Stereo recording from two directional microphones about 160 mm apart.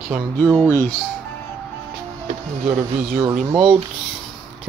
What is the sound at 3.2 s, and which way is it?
Speech, 25° right (ahead or behind).